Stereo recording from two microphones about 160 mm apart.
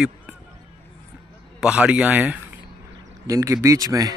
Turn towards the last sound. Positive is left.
turn(degrees=-20)  # may be behind; listen again after turning